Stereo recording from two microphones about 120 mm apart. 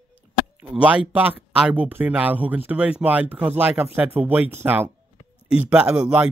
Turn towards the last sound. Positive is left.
turn(degrees=-10)  # may be behind; listen again after turning